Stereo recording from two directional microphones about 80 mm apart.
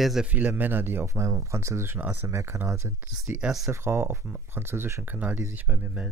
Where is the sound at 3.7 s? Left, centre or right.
Right.